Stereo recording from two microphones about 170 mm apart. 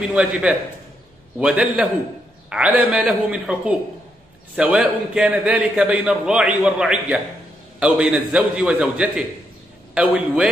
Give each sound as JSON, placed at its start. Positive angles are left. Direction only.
{"t": 0.1, "sound": "a man's voice", "side_deg": -5}